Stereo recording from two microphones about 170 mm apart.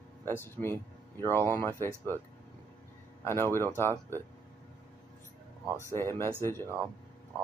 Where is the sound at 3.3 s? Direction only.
15° left (ahead or behind).